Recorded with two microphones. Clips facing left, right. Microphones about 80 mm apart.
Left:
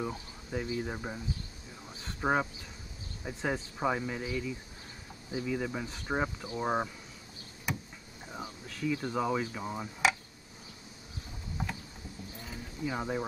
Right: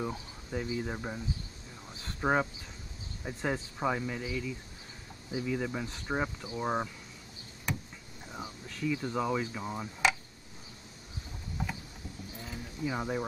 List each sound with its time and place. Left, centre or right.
0.0 s speech: centre
7.7 s vehicle: centre
8.4 s a sound: centre
8.8 s speech: centre
11.6 s vehicle: centre
12.4 s keys jangling: centre